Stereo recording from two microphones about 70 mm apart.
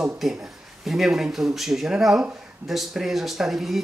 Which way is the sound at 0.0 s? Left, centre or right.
Centre.